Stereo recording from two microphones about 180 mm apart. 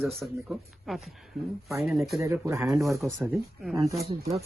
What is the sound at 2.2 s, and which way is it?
Speech, 15° right (ahead or behind).